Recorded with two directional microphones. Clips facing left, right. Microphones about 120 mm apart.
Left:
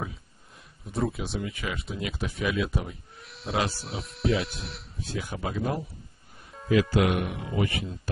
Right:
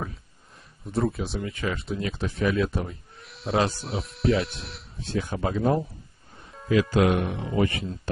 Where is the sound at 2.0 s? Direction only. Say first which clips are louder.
Right 3 dB; 30° right (ahead or behind).